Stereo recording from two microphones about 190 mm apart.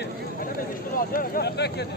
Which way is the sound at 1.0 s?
50° left (ahead or behind).